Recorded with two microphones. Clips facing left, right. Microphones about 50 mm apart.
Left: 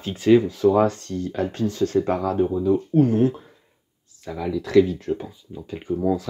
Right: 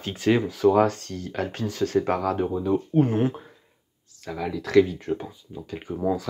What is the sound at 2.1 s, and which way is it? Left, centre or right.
Speech, centre.